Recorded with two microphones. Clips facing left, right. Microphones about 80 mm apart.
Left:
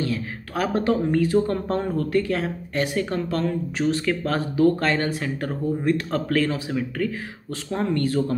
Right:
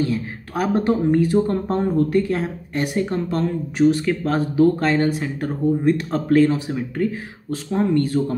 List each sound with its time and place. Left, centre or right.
0.7 s speech: right